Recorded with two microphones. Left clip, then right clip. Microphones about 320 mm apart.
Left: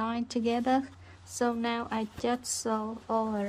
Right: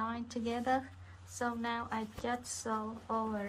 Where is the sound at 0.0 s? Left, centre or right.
Left.